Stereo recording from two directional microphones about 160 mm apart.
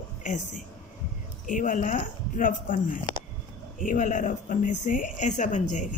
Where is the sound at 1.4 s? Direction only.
55° left (ahead or behind).